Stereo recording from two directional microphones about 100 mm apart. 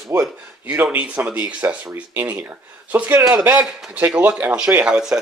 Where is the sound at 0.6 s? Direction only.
15° right (ahead or behind).